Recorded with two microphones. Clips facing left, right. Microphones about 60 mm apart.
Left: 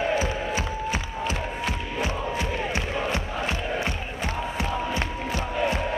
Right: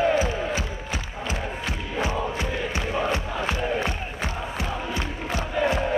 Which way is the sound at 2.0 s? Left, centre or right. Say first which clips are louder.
Right 2 dB; right.